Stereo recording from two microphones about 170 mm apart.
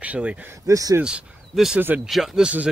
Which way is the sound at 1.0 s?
5° right (ahead or behind).